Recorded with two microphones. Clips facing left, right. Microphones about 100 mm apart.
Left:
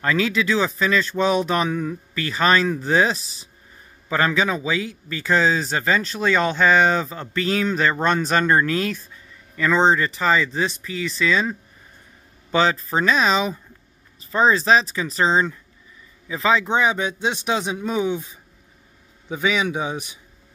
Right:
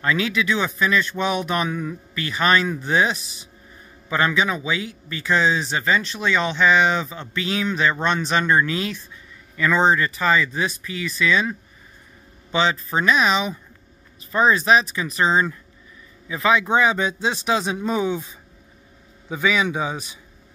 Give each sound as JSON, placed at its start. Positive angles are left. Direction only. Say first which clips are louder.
{"t": 0.0, "sound": "speech", "louder": "left 1 dB", "side_deg": 35}
{"t": 12.5, "sound": "speech", "louder": "left 2 dB", "side_deg": 40}